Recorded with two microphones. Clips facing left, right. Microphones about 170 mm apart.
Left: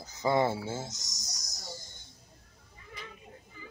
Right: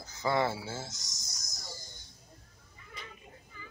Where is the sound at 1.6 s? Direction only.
20° left (ahead or behind).